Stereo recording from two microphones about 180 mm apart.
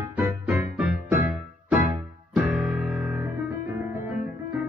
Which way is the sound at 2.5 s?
Centre (ahead or behind).